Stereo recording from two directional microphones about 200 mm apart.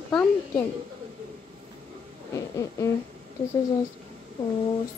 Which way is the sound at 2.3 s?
15° left (ahead or behind).